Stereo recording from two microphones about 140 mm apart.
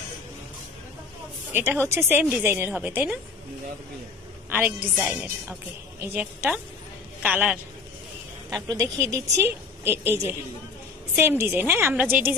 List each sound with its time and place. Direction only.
1.5 s a woman's voice: 15° right (ahead or behind)
4.5 s a woman's voice: 10° right (ahead or behind)
8.5 s a woman's voice: 25° right (ahead or behind)